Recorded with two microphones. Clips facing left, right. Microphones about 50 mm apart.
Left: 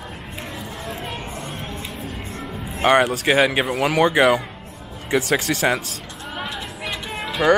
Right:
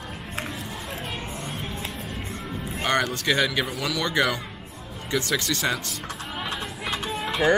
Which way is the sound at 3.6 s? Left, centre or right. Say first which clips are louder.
Left 10 dB; left.